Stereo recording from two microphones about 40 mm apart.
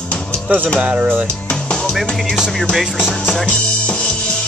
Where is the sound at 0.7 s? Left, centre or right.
Right.